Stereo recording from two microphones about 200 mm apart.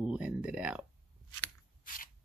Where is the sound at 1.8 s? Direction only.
45° left (ahead or behind).